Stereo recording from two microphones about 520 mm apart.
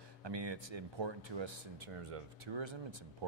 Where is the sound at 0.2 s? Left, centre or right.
Right.